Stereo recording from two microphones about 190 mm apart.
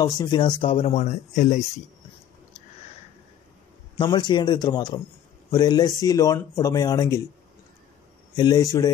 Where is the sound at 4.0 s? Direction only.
25° left (ahead or behind).